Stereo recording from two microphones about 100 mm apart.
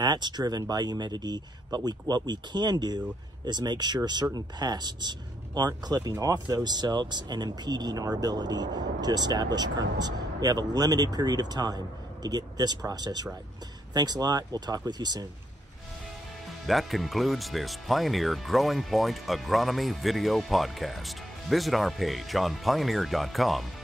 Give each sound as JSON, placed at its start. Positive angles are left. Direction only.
{"t": 0.0, "sound": "speech", "side_deg": -45}
{"t": 16.6, "sound": "speech", "side_deg": 0}